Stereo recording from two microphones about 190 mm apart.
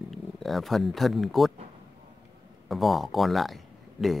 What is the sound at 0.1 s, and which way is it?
Speech, centre (ahead or behind).